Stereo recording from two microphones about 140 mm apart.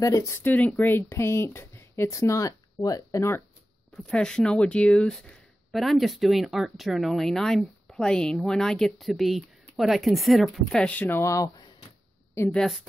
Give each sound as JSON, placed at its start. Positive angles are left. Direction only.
{"t": 0.0, "sound": "speech", "side_deg": 25}
{"t": 3.9, "sound": "speech", "side_deg": 5}
{"t": 12.4, "sound": "a woman's voice", "side_deg": 10}